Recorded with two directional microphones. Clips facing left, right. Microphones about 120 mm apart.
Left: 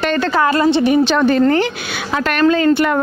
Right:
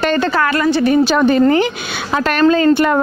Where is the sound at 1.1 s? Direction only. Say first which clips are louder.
Right 1 dB; 10° right (ahead or behind).